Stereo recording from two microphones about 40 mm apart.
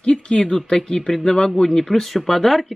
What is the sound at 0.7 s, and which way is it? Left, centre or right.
Speech, centre.